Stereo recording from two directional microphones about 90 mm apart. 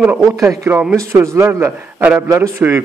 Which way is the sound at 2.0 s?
20° right (ahead or behind).